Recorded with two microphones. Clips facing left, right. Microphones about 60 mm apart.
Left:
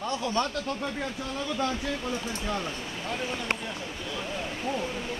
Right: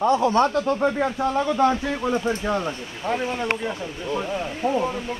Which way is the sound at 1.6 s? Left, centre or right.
Right.